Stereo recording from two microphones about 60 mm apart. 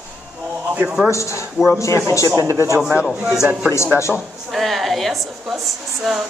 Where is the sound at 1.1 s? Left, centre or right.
Left.